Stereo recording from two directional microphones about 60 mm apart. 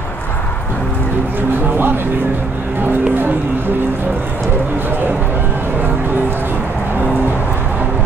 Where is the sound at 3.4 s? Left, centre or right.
Right.